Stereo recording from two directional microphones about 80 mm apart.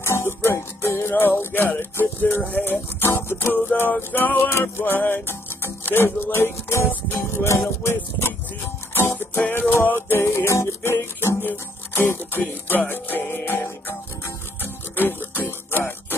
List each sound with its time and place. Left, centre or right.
0.0 s music: left